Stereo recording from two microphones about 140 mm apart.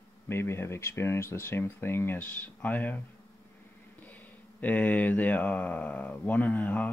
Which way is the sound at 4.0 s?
10° left (ahead or behind).